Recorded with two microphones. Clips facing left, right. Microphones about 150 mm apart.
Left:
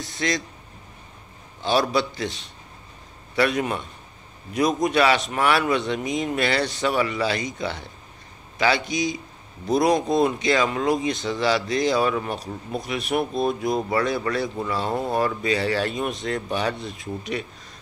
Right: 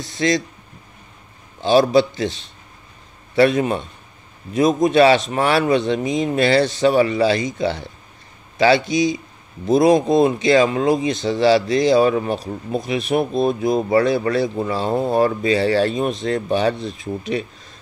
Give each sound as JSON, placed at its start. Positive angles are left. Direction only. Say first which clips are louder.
{"t": 0.0, "sound": "speech", "louder": "right 7 dB", "side_deg": -25}
{"t": 1.6, "sound": "speech", "louder": "right 8 dB", "side_deg": -25}